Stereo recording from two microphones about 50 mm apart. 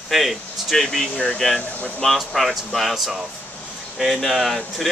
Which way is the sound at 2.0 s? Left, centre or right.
Centre.